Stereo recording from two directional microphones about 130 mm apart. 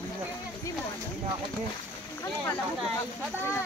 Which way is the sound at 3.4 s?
20° left (ahead or behind).